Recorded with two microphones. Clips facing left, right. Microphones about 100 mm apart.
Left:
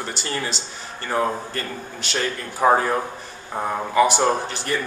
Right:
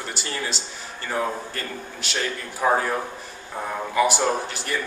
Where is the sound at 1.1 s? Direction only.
10° left (ahead or behind).